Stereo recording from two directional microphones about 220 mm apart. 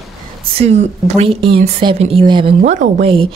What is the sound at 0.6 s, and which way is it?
Speech, 30° right (ahead or behind).